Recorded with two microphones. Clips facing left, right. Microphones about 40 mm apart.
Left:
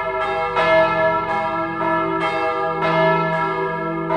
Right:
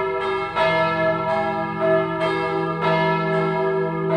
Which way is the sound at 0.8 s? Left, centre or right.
Left.